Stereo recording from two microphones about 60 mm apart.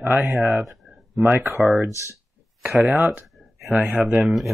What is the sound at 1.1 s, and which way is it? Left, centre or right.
Speech, right.